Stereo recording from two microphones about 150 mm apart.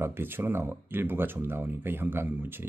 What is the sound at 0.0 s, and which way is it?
Speech, 15° right (ahead or behind).